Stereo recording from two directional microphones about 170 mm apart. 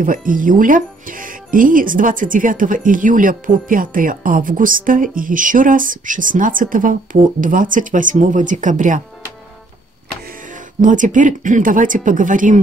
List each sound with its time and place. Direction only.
0.0 s speech: 55° right (ahead or behind)
10.5 s speech: 50° right (ahead or behind)